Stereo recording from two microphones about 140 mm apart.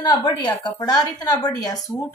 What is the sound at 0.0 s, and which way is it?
A woman's voice, 35° left (ahead or behind).